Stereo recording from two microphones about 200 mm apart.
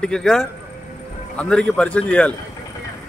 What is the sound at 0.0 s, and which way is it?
A man's voice, 5° left (ahead or behind).